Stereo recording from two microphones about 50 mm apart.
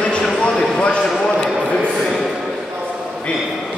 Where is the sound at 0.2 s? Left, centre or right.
Centre.